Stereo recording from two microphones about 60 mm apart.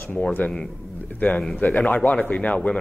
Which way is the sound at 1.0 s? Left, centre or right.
Left.